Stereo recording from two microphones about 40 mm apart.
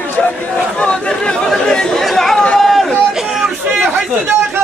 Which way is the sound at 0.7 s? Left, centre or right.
Left.